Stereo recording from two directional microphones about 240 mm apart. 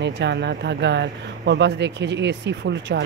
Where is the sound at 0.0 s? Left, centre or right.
Right.